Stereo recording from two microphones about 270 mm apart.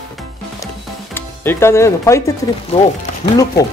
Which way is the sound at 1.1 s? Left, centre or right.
Centre.